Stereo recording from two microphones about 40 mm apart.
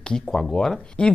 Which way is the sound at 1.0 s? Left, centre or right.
Left.